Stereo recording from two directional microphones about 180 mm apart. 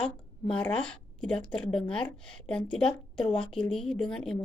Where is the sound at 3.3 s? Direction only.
30° left (ahead or behind).